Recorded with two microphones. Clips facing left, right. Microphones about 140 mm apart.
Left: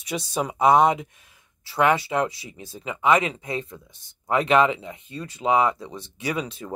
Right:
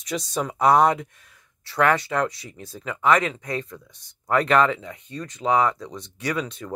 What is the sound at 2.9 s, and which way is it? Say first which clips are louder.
Speech: even; 20° left (ahead or behind).